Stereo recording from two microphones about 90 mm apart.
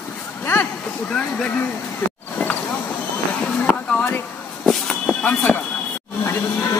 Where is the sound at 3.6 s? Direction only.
10° left (ahead or behind).